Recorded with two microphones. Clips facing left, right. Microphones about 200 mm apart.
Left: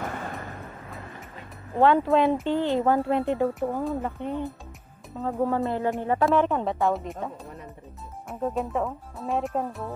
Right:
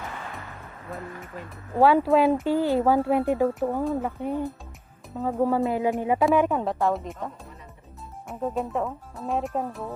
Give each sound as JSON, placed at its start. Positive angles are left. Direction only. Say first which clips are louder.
{"t": 0.0, "sound": "vehicle", "louder": "left 4 dB", "side_deg": 45}
{"t": 1.8, "sound": "speech", "louder": "right 1 dB", "side_deg": -5}
{"t": 8.3, "sound": "speech", "louder": "even", "side_deg": 0}